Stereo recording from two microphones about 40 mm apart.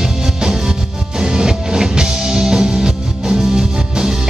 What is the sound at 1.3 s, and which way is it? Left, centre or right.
Music, centre.